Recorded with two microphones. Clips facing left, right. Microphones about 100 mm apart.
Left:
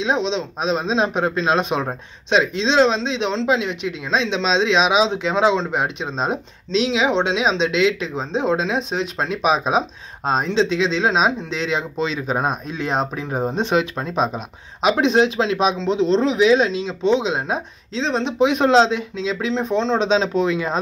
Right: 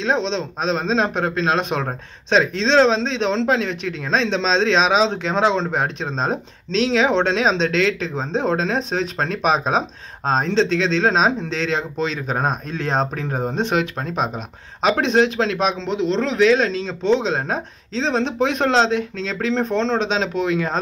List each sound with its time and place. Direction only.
0.0 s speech: 10° left (ahead or behind)
14.8 s speech: 15° left (ahead or behind)
18.0 s speech: centre (ahead or behind)
18.4 s speech: 15° left (ahead or behind)
20.0 s speech: 25° left (ahead or behind)